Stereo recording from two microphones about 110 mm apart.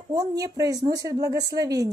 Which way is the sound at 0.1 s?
35° right (ahead or behind).